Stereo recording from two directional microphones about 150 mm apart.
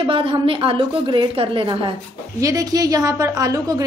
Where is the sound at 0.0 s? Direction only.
35° right (ahead or behind).